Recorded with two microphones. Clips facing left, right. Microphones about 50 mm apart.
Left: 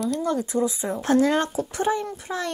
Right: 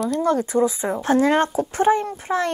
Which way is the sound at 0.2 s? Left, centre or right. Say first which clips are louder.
Right 5 dB; right.